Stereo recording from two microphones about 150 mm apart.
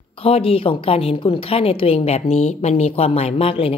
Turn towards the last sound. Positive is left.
turn(degrees=40)  # may be behind; listen again after turning